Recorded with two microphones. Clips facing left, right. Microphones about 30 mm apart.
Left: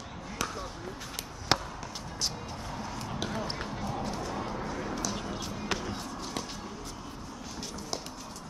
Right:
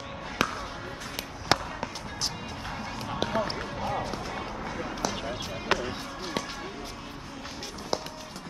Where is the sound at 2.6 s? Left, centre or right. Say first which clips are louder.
Right 4 dB; right.